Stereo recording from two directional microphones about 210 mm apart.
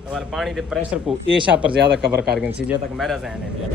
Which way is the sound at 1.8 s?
50° right (ahead or behind).